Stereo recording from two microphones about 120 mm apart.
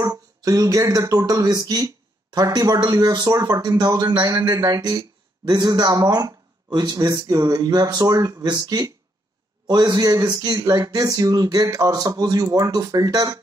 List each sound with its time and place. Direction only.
0.0 s speech: 30° right (ahead or behind)